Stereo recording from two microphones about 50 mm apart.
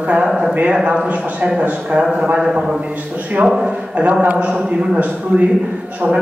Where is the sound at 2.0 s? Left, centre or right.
Centre.